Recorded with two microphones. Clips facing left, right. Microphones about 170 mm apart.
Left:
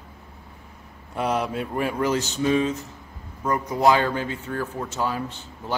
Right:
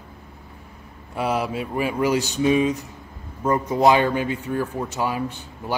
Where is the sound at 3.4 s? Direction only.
25° right (ahead or behind).